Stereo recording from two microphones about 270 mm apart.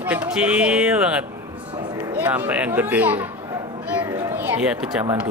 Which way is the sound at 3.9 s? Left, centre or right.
Centre.